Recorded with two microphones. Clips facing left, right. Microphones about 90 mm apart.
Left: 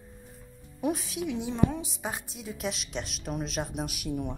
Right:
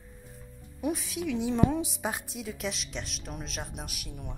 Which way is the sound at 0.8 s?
25° left (ahead or behind).